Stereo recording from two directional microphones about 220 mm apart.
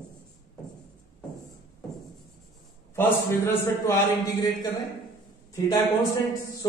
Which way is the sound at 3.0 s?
10° left (ahead or behind).